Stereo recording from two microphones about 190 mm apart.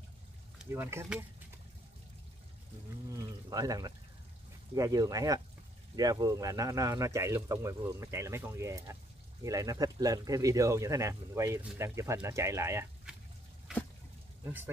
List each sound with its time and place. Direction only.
0.7 s speech: 15° right (ahead or behind)
3.1 s speech: 20° right (ahead or behind)